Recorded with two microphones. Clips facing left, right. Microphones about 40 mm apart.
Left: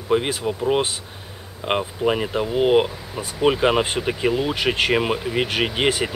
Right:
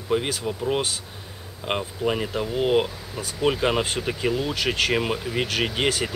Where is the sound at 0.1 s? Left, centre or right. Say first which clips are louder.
Left 4 dB; centre.